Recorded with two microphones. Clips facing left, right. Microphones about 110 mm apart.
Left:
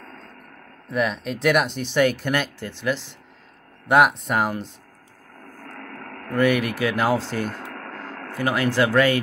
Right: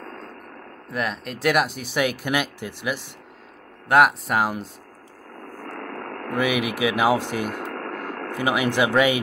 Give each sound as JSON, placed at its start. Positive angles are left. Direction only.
{"t": 0.0, "sound": "a sound", "side_deg": -45}
{"t": 0.8, "sound": "speech", "side_deg": 0}
{"t": 3.8, "sound": "speech", "side_deg": 0}
{"t": 5.8, "sound": "vehicle", "side_deg": -45}
{"t": 6.3, "sound": "speech", "side_deg": -15}
{"t": 7.7, "sound": "vehicle", "side_deg": -55}
{"t": 8.3, "sound": "speech", "side_deg": -15}